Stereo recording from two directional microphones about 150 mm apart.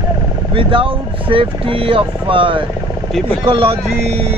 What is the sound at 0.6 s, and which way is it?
Speech, 35° right (ahead or behind).